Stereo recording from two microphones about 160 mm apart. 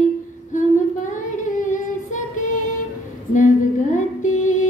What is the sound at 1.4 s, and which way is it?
Female singing, 55° left (ahead or behind).